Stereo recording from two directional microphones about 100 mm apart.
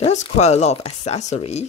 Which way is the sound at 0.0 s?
90° left.